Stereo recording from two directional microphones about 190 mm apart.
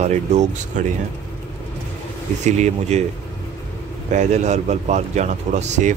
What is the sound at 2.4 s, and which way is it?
Speech, 40° right (ahead or behind).